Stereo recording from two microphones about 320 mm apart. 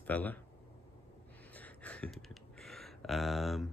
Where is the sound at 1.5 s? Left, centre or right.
Centre.